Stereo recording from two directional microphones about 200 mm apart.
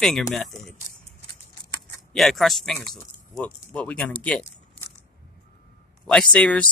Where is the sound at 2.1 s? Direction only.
Centre (ahead or behind).